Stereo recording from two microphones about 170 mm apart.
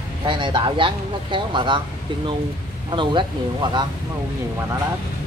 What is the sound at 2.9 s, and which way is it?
Speech, 30° right (ahead or behind).